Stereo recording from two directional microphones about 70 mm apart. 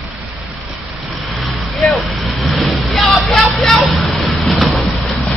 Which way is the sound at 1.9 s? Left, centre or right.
Centre.